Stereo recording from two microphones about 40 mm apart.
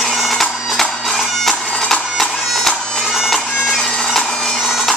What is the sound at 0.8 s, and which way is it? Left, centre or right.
Bagpipes, centre.